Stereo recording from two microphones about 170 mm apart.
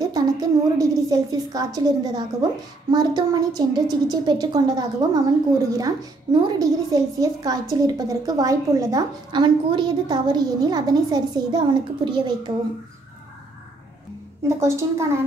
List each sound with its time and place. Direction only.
0.0 s a woman's voice: 20° right (ahead or behind)
14.6 s a woman's voice: 15° right (ahead or behind)